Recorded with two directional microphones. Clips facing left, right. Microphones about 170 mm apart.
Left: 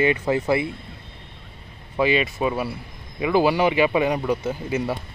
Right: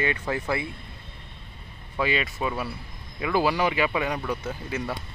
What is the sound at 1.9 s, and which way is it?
Speech, 15° left (ahead or behind).